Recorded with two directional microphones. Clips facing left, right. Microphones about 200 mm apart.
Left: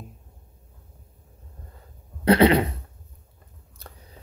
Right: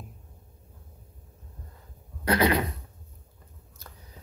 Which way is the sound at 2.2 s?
30° left (ahead or behind).